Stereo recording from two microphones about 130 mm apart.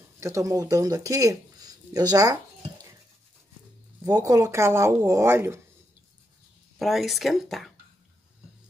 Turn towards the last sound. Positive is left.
turn(degrees=0)  # may be behind; listen again after turning